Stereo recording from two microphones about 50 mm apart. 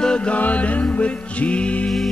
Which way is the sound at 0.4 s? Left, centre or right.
Left.